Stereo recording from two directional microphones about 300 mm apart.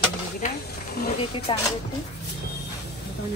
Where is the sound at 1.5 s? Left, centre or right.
Centre.